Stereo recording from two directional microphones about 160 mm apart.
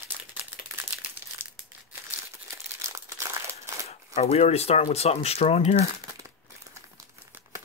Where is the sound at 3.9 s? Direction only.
40° left (ahead or behind).